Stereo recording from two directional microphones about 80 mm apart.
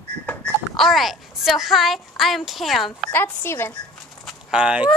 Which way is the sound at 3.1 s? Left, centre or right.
Left.